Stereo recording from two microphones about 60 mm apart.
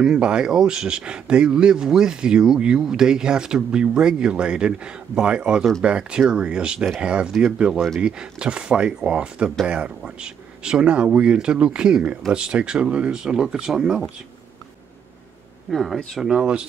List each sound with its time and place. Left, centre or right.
0.0 s speech: centre
15.7 s speech: centre